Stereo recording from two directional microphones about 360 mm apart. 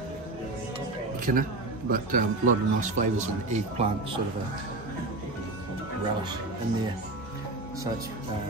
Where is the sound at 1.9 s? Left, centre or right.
Right.